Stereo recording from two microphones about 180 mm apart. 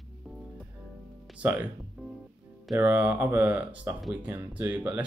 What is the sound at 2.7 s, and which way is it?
Speech, 10° right (ahead or behind).